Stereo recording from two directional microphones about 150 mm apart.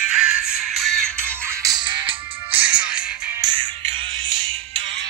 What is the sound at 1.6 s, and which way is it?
Music, 30° right (ahead or behind).